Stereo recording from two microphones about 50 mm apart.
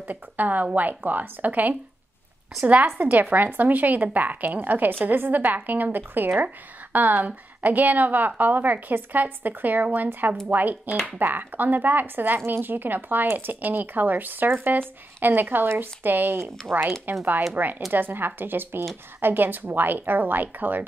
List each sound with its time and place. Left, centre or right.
0.0 s a woman's voice: right